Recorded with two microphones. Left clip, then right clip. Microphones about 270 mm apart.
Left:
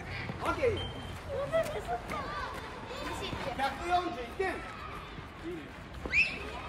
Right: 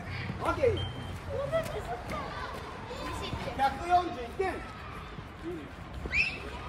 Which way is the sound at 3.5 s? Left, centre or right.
Centre.